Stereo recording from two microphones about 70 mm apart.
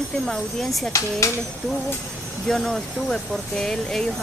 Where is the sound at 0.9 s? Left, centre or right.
Left.